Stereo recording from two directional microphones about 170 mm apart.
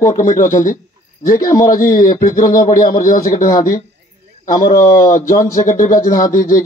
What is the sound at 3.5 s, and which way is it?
Speech, 20° left (ahead or behind).